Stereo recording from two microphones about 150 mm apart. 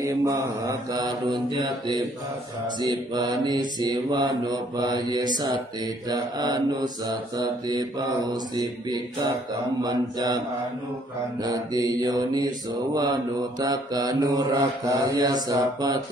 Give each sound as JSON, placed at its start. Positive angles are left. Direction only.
{"t": 0.0, "sound": "mantra", "side_deg": -20}
{"t": 11.4, "sound": "mantra", "side_deg": -25}